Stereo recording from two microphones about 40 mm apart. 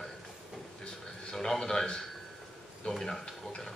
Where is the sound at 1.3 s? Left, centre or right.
Centre.